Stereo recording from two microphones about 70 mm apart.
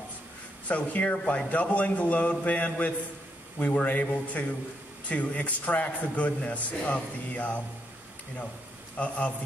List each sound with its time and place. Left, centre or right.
0.7 s a man's voice: centre
8.9 s a man's voice: centre